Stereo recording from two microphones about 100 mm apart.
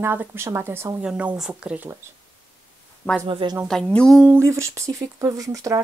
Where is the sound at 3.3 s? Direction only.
60° right (ahead or behind).